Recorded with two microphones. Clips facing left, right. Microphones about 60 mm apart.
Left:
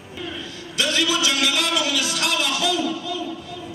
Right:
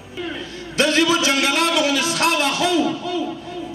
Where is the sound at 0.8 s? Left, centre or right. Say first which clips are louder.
Right 5 dB; right.